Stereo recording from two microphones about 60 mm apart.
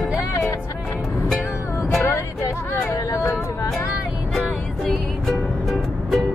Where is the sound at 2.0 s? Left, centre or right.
Left.